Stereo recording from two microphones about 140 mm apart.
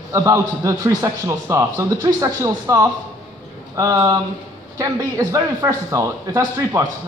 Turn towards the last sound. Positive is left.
turn(degrees=-20)  # may be behind; listen again after turning